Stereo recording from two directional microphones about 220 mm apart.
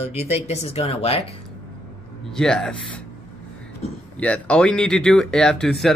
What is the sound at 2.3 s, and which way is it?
Speech, 5° left (ahead or behind).